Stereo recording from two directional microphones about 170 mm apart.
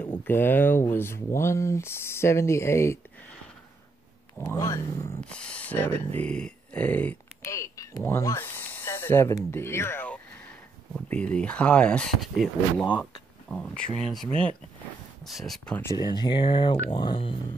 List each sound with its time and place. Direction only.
0.2 s speech: 10° left (ahead or behind)
4.6 s speech: 20° left (ahead or behind)
5.2 s speech: 5° left (ahead or behind)
13.5 s speech: 5° left (ahead or behind); by 17.4 s 30° left (ahead or behind)